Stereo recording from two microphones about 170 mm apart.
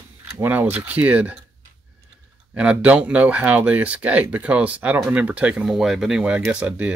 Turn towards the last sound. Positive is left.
turn(degrees=-5)  # may be behind; listen again after turning